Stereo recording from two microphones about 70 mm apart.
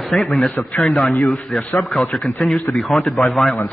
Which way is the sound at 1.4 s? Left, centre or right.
Centre.